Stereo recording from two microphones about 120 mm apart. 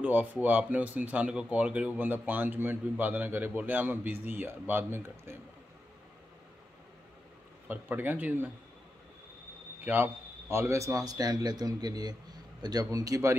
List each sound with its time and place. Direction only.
0.0 s speech: 15° right (ahead or behind)
7.6 s speech: 15° right (ahead or behind)
9.8 s a man's voice: 15° right (ahead or behind)